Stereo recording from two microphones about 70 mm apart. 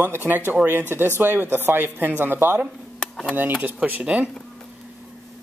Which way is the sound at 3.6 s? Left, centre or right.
Right.